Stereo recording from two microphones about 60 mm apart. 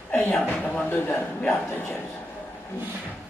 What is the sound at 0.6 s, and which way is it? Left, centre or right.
Speech, left.